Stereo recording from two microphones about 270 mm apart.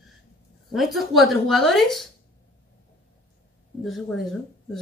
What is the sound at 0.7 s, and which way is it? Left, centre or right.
Speech, centre.